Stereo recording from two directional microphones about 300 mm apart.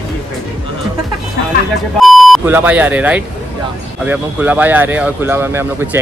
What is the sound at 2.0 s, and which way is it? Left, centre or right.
Speech, centre.